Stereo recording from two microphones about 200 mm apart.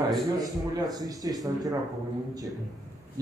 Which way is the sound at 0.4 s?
20° right (ahead or behind).